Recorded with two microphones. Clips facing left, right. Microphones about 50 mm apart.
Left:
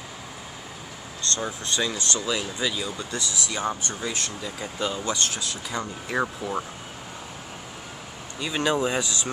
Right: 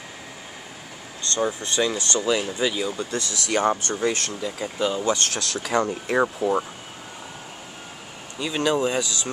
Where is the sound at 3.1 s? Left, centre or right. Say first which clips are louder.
Right 5 dB; right.